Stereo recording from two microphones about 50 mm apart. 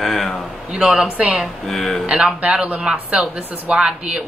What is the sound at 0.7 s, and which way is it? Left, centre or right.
Speech, centre.